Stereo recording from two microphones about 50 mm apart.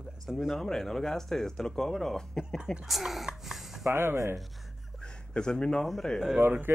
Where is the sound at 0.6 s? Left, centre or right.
Centre.